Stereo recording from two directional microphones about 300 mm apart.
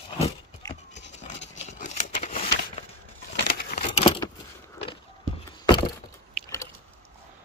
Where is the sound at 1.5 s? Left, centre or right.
Left.